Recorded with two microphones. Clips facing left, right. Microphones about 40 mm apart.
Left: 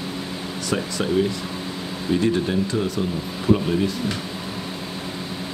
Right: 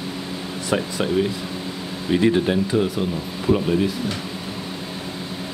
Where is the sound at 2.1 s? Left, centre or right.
Right.